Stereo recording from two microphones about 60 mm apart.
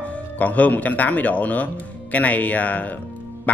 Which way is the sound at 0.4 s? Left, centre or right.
Left.